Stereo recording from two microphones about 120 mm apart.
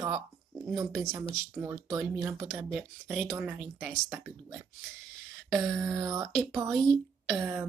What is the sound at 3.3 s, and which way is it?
A woman's voice, 10° right (ahead or behind).